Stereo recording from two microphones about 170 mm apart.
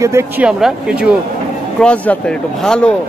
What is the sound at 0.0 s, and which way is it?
Speech, 15° right (ahead or behind).